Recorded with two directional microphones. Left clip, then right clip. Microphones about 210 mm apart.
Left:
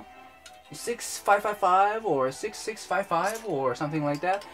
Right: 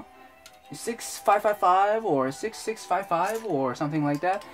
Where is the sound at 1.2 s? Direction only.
35° right (ahead or behind).